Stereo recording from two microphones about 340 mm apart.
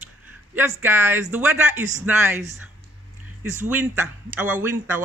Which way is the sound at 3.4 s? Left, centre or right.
Centre.